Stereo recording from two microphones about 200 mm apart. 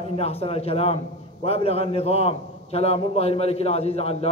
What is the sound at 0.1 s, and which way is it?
A man's voice, 30° left (ahead or behind).